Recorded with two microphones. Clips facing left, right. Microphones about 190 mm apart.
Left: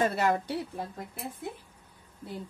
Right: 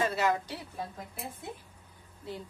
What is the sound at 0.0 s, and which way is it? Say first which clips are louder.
Speech: left 2 dB; 55° left (ahead or behind).